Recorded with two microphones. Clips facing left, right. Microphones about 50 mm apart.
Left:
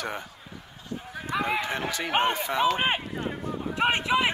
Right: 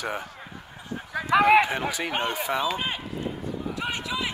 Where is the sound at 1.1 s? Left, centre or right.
Right.